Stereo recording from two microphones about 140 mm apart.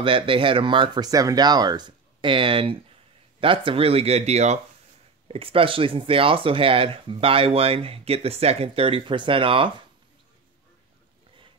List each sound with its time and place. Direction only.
0.0 s speech: 40° right (ahead or behind)
5.3 s speech: 40° right (ahead or behind)